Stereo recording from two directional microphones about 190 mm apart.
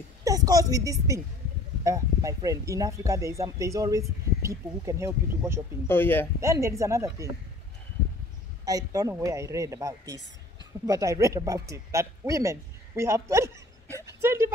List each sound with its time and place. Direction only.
0.2 s a woman's voice: 20° right (ahead or behind)
5.9 s speech: 10° left (ahead or behind)
6.4 s speech: 15° right (ahead or behind)
8.6 s speech: 20° right (ahead or behind)